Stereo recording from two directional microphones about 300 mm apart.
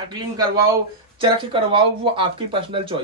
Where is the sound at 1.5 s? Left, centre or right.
Centre.